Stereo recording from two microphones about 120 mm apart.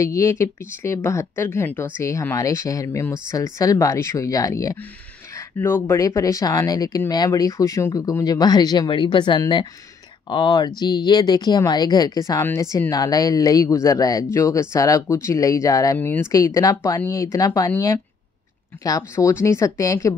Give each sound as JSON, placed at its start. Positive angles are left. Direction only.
{"t": 0.0, "sound": "speech", "side_deg": 25}
{"t": 5.3, "sound": "speech", "side_deg": 20}
{"t": 16.0, "sound": "speech", "side_deg": 20}